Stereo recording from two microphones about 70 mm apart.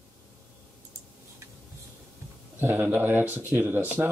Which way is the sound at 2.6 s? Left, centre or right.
Right.